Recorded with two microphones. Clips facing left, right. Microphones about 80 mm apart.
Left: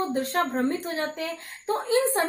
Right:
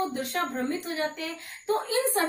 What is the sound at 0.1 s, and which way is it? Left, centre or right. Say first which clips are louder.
Speech: left 5 dB; left.